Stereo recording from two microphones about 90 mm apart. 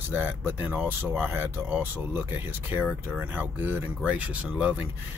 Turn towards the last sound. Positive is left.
turn(degrees=-15)  # may be behind; listen again after turning